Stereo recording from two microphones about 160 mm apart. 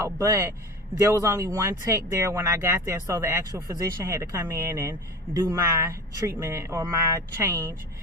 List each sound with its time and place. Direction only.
0.0 s a man's voice: 20° right (ahead or behind)